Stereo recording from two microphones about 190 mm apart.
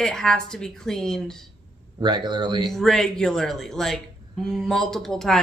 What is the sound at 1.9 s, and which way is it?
Speech, 25° right (ahead or behind).